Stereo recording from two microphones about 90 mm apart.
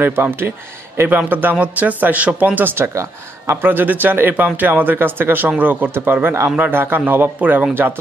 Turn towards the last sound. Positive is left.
turn(degrees=-20)  # may be behind; listen again after turning